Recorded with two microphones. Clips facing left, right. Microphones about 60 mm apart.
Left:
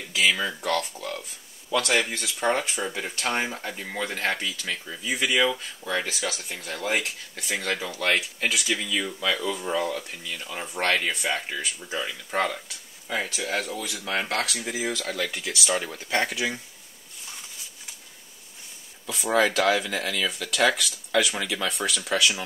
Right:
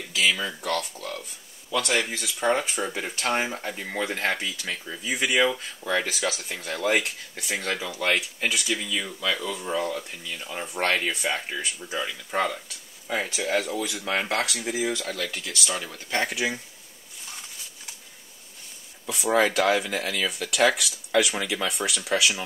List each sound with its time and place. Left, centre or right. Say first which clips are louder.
0.1 s speech: left 1 dB; centre
2.8 s speech: right 1 dB; centre
4.8 s speech: even; centre; by 6.9 s right
7.4 s speech: even; centre
15.2 s speech: left 2 dB; centre
19.0 s speech: even; centre